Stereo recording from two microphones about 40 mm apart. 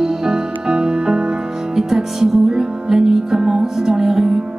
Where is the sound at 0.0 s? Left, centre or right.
Centre.